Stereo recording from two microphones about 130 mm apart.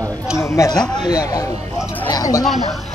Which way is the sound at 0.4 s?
25° left (ahead or behind).